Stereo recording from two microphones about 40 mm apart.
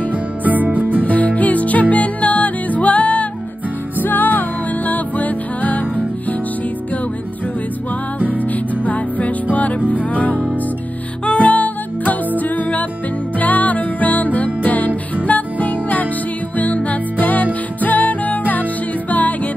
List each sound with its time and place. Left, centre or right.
0.1 s music: right
1.0 s music: left
4.0 s music: left
8.2 s music: right
8.5 s music: left
11.2 s music: left